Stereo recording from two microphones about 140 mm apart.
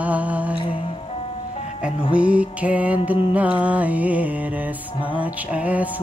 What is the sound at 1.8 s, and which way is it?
Music, 5° right (ahead or behind).